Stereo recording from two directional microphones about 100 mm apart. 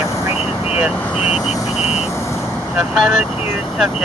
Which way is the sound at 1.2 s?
90° left.